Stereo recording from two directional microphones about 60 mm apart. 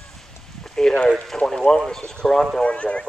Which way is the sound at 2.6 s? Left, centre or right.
Centre.